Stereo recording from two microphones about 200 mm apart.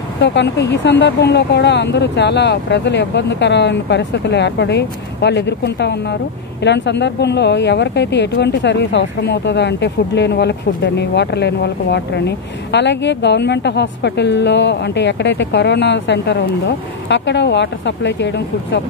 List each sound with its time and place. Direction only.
0.2 s speech: 60° left (ahead or behind)